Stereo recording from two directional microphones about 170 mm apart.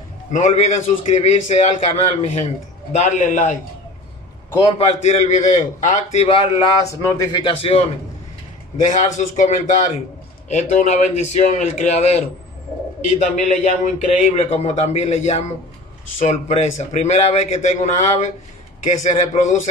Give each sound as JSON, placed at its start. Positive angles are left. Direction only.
{"t": 0.3, "sound": "a man's voice", "side_deg": 45}
{"t": 4.7, "sound": "a man's voice", "side_deg": 40}
{"t": 6.9, "sound": "speech", "side_deg": 20}
{"t": 7.4, "sound": "a man's voice", "side_deg": 35}
{"t": 8.7, "sound": "a man's voice", "side_deg": 50}
{"t": 13.2, "sound": "a man's voice", "side_deg": 50}
{"t": 14.3, "sound": "a man's voice", "side_deg": 35}